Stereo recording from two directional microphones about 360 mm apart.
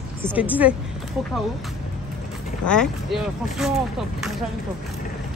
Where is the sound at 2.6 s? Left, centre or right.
Centre.